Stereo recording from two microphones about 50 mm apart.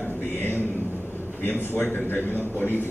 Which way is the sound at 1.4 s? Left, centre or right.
Left.